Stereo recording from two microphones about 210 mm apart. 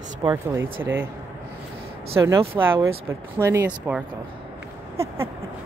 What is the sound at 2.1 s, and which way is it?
Speech, 15° right (ahead or behind).